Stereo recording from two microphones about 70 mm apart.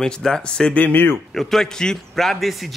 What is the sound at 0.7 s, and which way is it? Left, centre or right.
Speech, left.